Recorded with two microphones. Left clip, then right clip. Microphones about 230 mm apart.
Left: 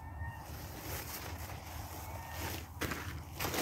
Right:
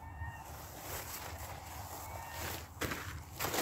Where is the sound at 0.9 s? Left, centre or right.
Centre.